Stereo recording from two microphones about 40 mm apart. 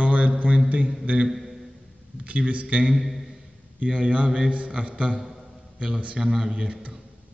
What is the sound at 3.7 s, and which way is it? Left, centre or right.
A man's voice, right.